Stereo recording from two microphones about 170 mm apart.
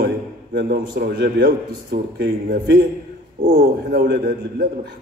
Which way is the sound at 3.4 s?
55° right (ahead or behind).